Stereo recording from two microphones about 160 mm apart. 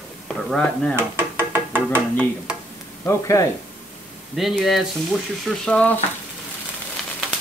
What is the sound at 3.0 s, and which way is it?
Speech, 20° left (ahead or behind).